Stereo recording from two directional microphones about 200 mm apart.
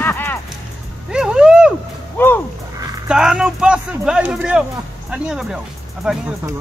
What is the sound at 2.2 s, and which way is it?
Speech, 10° left (ahead or behind).